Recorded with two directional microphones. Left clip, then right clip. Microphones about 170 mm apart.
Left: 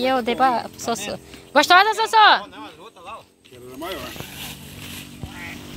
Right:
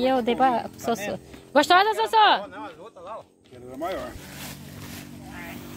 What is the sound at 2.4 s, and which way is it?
Speech, 25° right (ahead or behind).